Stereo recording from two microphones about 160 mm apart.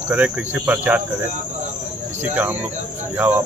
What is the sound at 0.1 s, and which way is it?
Speech, 10° right (ahead or behind).